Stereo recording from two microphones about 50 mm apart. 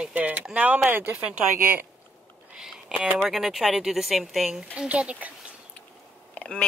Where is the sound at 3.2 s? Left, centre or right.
Centre.